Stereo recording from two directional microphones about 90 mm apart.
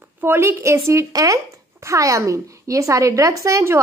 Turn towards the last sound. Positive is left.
turn(degrees=-30)  # may be behind; listen again after turning